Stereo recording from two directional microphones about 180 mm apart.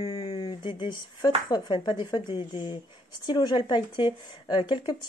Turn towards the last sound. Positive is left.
turn(degrees=25)  # may be behind; listen again after turning